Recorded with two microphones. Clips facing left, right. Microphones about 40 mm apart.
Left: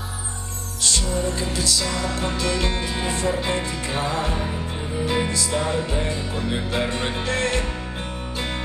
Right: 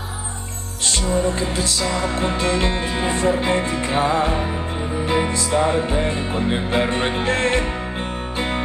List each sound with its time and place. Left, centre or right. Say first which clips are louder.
0.8 s music: right 4 dB; right